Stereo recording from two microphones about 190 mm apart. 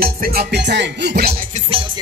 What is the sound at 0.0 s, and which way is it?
Music, 55° right (ahead or behind).